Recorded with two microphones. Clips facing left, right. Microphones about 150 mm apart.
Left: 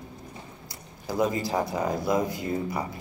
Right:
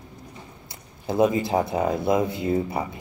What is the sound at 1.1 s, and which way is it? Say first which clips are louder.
Speech: right 5 dB; 25° right (ahead or behind).